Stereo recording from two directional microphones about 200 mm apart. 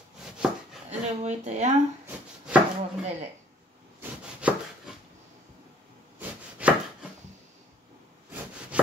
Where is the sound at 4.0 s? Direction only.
5° right (ahead or behind).